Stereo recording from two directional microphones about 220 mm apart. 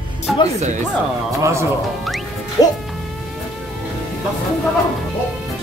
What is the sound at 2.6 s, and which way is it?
Speech, 20° left (ahead or behind).